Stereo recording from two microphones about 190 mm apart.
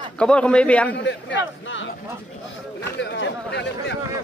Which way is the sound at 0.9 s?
75° left (ahead or behind).